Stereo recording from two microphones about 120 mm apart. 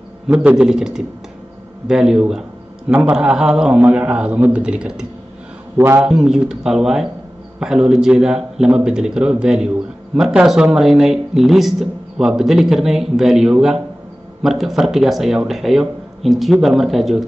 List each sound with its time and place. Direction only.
0.3 s a man's voice: 10° right (ahead or behind)
6.0 s speech: centre (ahead or behind)